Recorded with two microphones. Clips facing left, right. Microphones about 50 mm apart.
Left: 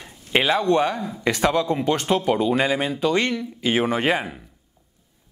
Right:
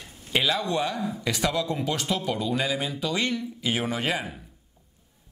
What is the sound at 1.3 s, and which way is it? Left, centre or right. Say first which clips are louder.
A man's voice: left 7 dB; left.